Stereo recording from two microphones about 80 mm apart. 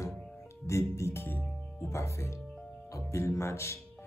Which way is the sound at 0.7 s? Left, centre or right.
Left.